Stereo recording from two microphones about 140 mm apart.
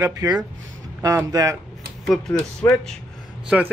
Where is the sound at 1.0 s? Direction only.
25° right (ahead or behind).